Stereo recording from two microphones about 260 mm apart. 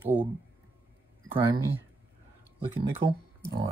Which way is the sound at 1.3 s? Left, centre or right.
Centre.